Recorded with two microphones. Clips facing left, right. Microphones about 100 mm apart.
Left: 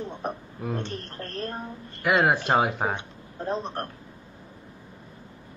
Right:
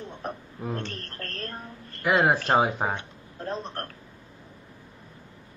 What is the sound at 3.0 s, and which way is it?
Speech, 15° left (ahead or behind).